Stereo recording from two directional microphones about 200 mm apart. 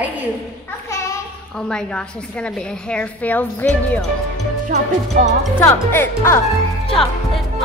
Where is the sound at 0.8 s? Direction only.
15° left (ahead or behind).